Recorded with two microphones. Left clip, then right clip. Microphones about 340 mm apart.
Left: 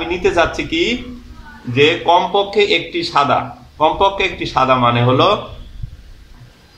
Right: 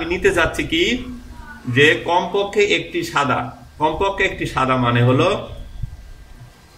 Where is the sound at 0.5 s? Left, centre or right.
Centre.